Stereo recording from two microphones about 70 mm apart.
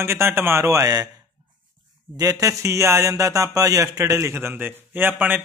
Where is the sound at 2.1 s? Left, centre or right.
Right.